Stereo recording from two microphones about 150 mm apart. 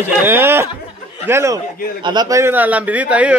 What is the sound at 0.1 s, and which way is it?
A man's voice, 15° right (ahead or behind).